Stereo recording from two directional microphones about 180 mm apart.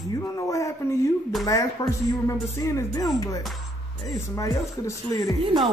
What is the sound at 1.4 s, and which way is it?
Speech, 20° left (ahead or behind).